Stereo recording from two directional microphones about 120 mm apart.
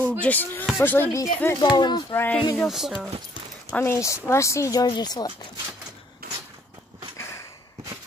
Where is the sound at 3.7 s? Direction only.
20° left (ahead or behind).